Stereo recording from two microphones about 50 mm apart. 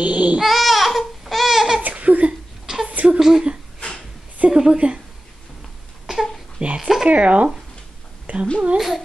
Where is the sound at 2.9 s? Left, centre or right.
Right.